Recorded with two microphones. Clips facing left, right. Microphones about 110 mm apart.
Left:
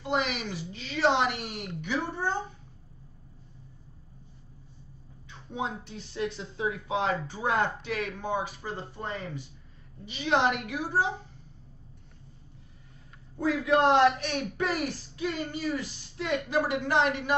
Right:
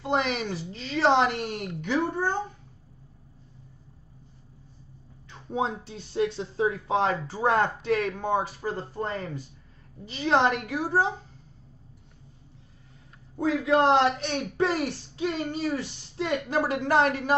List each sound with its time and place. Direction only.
0.0 s speech: 35° right (ahead or behind)
1.8 s speech: 45° right (ahead or behind)
5.5 s speech: 35° right (ahead or behind)
13.4 s speech: 30° right (ahead or behind)